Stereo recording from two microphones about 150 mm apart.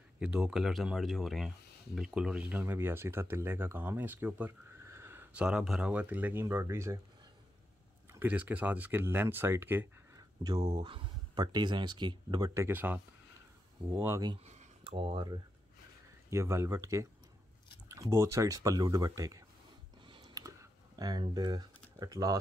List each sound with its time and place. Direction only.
0.2 s speech: 5° right (ahead or behind)
8.1 s speech: 10° right (ahead or behind)
10.4 s speech: 25° right (ahead or behind)
14.4 s a sound: 50° right (ahead or behind)
15.0 s speech: 35° right (ahead or behind)
16.3 s speech: 20° right (ahead or behind)
18.1 s speech: 20° right (ahead or behind)
20.1 s typing: 30° right (ahead or behind)